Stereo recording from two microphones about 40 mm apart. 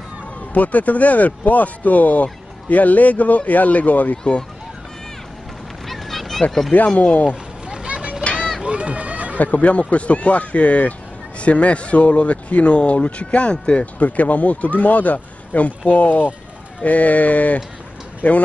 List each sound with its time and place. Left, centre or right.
0.5 s speech: left
4.2 s speech: left
5.9 s a sound: centre
6.7 s speech: left
7.6 s a sound: right
8.2 s children playing: left
8.5 s run: right
9.4 s speech: left